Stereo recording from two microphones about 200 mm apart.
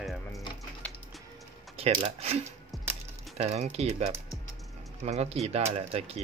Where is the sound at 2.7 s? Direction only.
Centre (ahead or behind).